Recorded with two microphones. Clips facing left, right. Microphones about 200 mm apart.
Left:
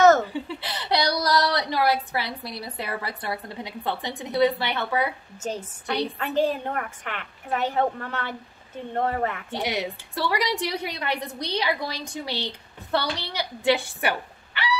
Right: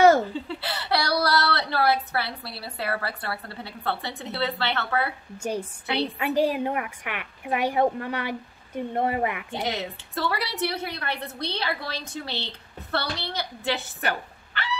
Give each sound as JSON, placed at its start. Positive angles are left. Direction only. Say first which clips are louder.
{"t": 0.0, "sound": "a sound", "louder": "even", "side_deg": -10}
{"t": 0.3, "sound": "speech", "louder": "even", "side_deg": 15}
{"t": 5.4, "sound": "a woman's voice", "louder": "right 2 dB", "side_deg": -10}
{"t": 9.5, "sound": "a woman's voice", "louder": "left 2 dB", "side_deg": 15}